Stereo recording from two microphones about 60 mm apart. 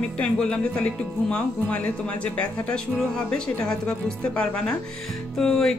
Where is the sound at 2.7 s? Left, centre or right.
Centre.